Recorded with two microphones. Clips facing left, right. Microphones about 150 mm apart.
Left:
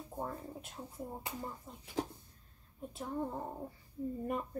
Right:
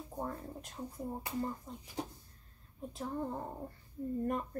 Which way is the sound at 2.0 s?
90° left.